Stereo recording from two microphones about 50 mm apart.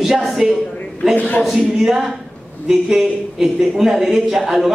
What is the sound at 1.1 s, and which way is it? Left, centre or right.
Speech, left.